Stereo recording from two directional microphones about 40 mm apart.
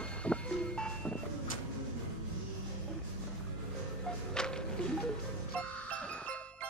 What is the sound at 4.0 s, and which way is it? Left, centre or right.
Music, centre.